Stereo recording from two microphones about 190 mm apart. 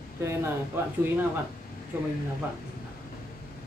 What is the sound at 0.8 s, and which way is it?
Speech, 10° right (ahead or behind).